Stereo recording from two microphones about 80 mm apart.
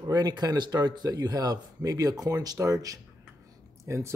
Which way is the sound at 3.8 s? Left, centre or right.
Right.